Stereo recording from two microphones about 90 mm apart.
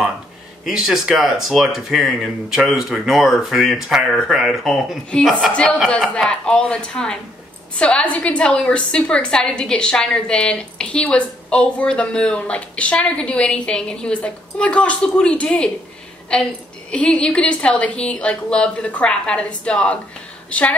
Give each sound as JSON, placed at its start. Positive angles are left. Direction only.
{"t": 0.7, "sound": "speech", "side_deg": -5}
{"t": 5.5, "sound": "a woman's voice", "side_deg": 15}